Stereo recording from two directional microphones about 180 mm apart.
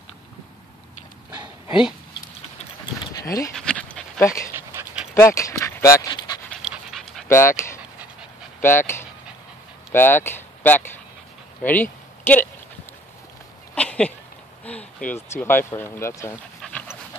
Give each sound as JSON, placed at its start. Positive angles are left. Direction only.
{"t": 1.7, "sound": "speech", "side_deg": -5}
{"t": 3.5, "sound": "dog", "side_deg": 5}
{"t": 4.7, "sound": "dog", "side_deg": -15}
{"t": 5.1, "sound": "dog", "side_deg": 15}
{"t": 6.6, "sound": "dog", "side_deg": -5}
{"t": 7.2, "sound": "speech", "side_deg": 15}
{"t": 11.6, "sound": "a sound", "side_deg": 10}
{"t": 13.7, "sound": "a sound", "side_deg": 5}
{"t": 14.6, "sound": "speech", "side_deg": 5}
{"t": 16.6, "sound": "pant", "side_deg": 10}